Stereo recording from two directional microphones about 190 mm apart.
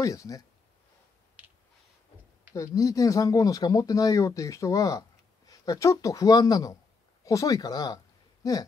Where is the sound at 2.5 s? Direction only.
15° left (ahead or behind).